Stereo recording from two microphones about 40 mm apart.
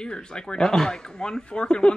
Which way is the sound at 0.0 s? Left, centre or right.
Left.